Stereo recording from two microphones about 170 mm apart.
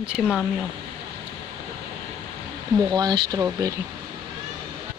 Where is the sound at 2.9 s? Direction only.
25° right (ahead or behind).